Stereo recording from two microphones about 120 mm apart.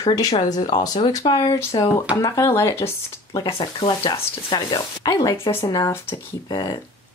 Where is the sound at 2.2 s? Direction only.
25° left (ahead or behind).